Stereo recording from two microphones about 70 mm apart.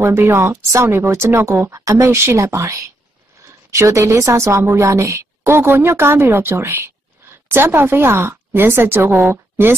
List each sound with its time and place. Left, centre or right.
0.0 s a woman's voice: right
5.5 s speech: right